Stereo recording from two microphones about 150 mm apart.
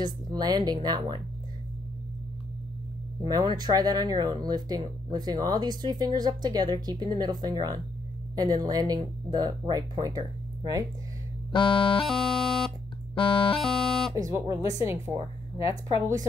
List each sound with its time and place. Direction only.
0.0 s speech: 25° right (ahead or behind)
3.3 s speech: 25° right (ahead or behind)
11.5 s music: 35° left (ahead or behind)
12.1 s music: centre (ahead or behind)
13.1 s music: 35° left (ahead or behind)
13.6 s music: centre (ahead or behind)
14.1 s speech: 25° right (ahead or behind)